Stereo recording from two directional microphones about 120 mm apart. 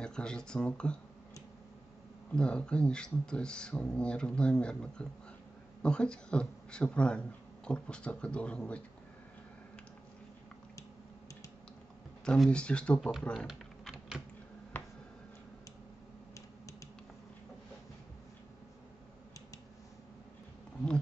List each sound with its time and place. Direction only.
0.0 s speech: 5° left (ahead or behind)
2.3 s speech: 10° left (ahead or behind)
12.3 s speech: 10° left (ahead or behind)
13.5 s typing: 5° right (ahead or behind)
14.7 s finger snapping: 15° left (ahead or behind)
16.3 s typing: 25° left (ahead or behind)